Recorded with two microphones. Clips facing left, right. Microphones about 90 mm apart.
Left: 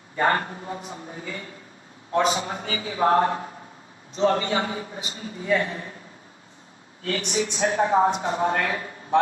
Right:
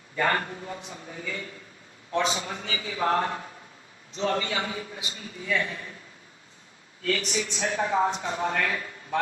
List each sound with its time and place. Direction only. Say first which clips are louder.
0.1 s a man's voice: left 3 dB; 30° left (ahead or behind)
7.0 s a man's voice: left 2 dB; 30° left (ahead or behind)